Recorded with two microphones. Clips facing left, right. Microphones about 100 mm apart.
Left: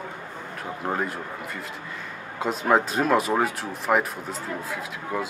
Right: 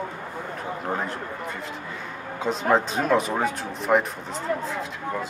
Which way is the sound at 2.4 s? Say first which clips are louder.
Even; 5° left (ahead or behind).